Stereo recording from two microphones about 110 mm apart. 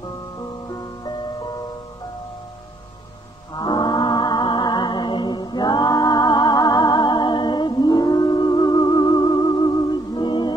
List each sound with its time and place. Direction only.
3.5 s music: 45° left (ahead or behind)